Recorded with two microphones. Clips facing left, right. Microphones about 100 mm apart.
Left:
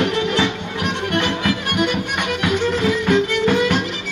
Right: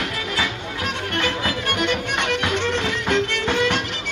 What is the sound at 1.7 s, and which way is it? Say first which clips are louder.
Music: left 2 dB; 10° left (ahead or behind).